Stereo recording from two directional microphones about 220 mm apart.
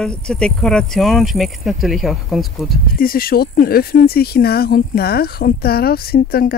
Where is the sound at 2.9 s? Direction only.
40° left (ahead or behind).